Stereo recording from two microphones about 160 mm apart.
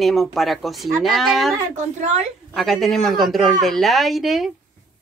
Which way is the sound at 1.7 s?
45° right (ahead or behind).